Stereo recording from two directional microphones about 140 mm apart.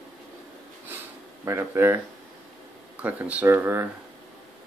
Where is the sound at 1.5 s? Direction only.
15° right (ahead or behind).